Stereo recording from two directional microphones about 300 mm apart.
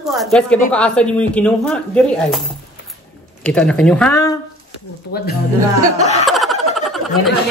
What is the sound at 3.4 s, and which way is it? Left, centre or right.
Speech, centre.